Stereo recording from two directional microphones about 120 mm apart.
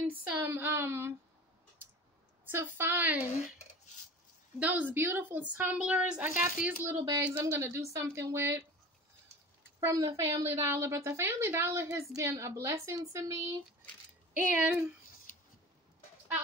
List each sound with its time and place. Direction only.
0.0 s a sound: 20° right (ahead or behind)
2.4 s a woman's voice: 20° right (ahead or behind)
4.6 s a woman's voice: 15° right (ahead or behind)
9.8 s a woman's voice: 25° right (ahead or behind)
14.3 s a woman's voice: 15° right (ahead or behind)
15.3 s a sound: 90° left